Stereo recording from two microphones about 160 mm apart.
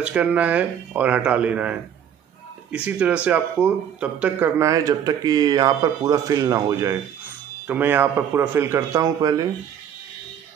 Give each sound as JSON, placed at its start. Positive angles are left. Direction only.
{"t": 0.0, "sound": "a man's voice", "side_deg": -5}